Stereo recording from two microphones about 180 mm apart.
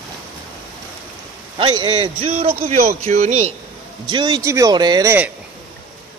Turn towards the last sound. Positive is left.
turn(degrees=-15)  # may be behind; listen again after turning